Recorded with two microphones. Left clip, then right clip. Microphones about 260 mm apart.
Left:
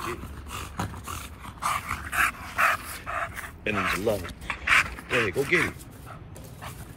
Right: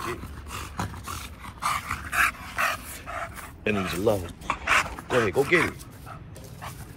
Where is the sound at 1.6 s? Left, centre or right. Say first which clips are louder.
Even; centre.